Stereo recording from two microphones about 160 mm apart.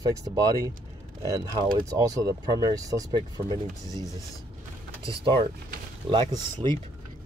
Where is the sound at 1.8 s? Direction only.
20° right (ahead or behind).